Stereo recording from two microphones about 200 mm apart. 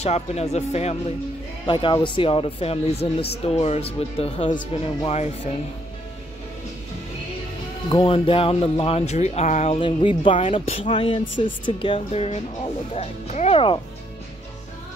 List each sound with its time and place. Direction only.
0.0 s speech: 30° left (ahead or behind)
7.9 s speech: 25° left (ahead or behind)